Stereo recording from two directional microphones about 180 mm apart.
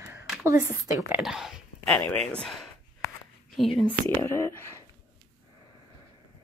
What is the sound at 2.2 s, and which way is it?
Speech, 5° left (ahead or behind).